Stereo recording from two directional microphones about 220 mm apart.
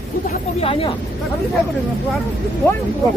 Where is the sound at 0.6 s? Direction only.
25° left (ahead or behind).